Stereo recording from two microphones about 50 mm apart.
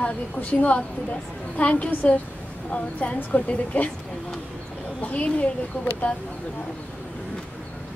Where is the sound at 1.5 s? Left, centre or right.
Left.